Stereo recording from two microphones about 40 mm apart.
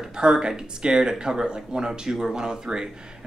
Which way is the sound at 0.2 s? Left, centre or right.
Centre.